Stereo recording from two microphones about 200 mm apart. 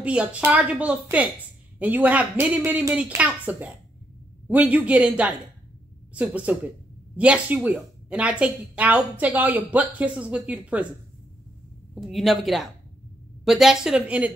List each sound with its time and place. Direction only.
0.0 s speech: 5° right (ahead or behind)
11.9 s speech: centre (ahead or behind)